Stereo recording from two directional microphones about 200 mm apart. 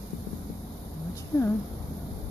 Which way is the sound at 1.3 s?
15° left (ahead or behind).